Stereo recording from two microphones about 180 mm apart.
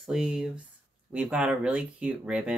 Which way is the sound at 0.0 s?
5° right (ahead or behind).